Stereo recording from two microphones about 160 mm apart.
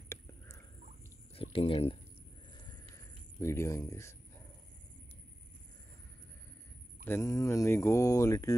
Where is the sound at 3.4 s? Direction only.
20° left (ahead or behind).